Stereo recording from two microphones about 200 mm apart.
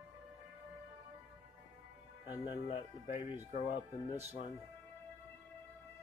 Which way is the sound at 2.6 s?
30° left (ahead or behind).